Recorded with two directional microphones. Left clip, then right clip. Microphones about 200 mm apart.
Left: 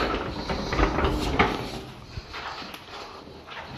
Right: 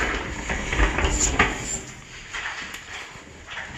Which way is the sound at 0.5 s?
10° left (ahead or behind).